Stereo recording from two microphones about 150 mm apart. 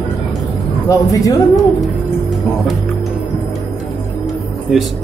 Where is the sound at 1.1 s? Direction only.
25° left (ahead or behind).